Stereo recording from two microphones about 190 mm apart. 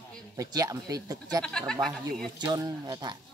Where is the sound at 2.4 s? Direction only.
25° right (ahead or behind).